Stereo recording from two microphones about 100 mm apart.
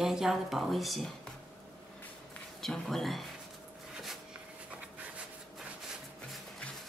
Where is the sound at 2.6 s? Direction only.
5° left (ahead or behind).